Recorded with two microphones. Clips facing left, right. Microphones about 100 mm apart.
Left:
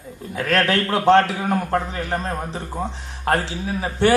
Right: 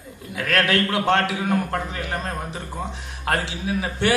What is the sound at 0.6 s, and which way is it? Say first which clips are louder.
Speech: right 1 dB; 40° left (ahead or behind).